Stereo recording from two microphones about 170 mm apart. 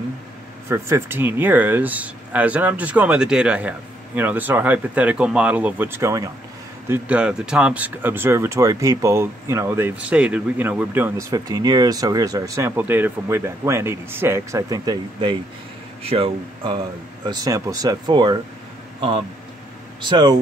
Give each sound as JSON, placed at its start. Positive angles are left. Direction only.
{"t": 0.7, "sound": "speech", "side_deg": -15}
{"t": 6.9, "sound": "speech", "side_deg": -5}